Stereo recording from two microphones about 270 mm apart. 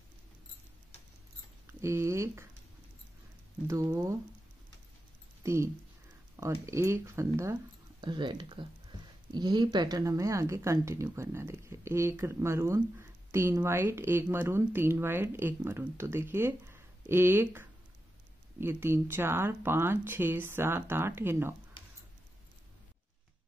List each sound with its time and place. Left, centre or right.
1.7 s speech: centre
3.6 s speech: centre
5.4 s speech: centre
21.8 s squish: centre